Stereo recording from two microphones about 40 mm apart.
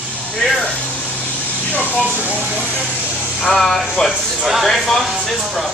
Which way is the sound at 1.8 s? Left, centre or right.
Right.